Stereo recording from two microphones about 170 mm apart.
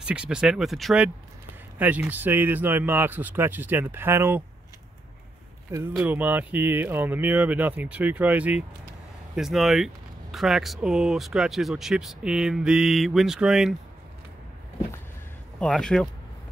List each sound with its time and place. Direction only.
0.0 s speech: 5° right (ahead or behind)
5.9 s speech: 10° right (ahead or behind)
15.6 s speech: 5° left (ahead or behind)